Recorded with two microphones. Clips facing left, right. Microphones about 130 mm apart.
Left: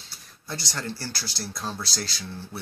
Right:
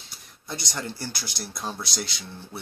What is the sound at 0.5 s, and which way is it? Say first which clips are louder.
Speech: even; 15° right (ahead or behind).